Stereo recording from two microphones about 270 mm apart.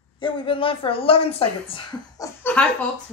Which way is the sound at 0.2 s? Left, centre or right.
Centre.